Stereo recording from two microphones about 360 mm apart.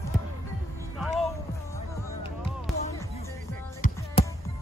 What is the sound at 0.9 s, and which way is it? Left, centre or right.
Music, centre.